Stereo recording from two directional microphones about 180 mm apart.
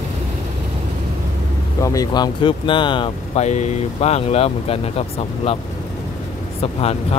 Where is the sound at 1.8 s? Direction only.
20° left (ahead or behind).